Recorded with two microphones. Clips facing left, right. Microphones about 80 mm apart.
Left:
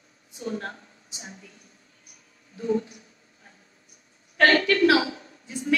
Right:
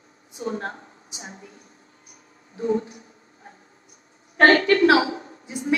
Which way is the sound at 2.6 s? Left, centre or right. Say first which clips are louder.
Right 2 dB; right.